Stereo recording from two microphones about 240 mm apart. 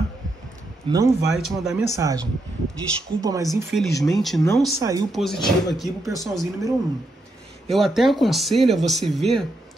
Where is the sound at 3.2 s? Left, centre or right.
Centre.